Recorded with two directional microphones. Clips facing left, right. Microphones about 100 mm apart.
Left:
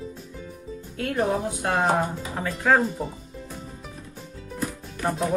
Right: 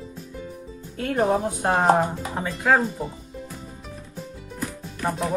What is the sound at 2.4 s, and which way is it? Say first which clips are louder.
Speech: even; centre (ahead or behind).